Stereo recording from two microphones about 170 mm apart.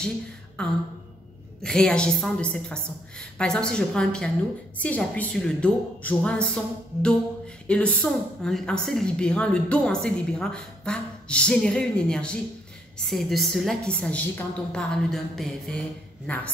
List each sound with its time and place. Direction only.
0.6 s a woman's voice: 5° left (ahead or behind)